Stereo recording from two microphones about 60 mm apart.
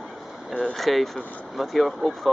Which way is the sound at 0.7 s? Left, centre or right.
Centre.